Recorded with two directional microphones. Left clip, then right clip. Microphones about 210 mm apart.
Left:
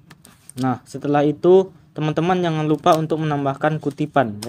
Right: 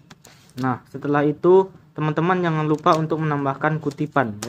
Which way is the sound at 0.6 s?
30° left (ahead or behind).